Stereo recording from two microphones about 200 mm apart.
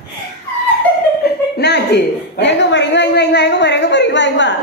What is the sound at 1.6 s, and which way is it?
A woman's voice, 55° left (ahead or behind).